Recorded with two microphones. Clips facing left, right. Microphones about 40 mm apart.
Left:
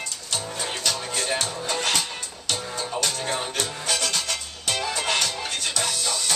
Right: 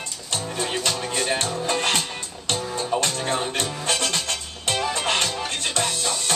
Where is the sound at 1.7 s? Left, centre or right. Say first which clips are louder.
Right 2 dB; right.